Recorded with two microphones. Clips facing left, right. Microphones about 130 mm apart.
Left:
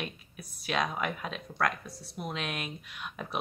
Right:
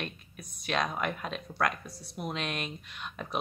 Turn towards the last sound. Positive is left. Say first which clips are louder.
# even
turn(degrees=5)  # may be behind; listen again after turning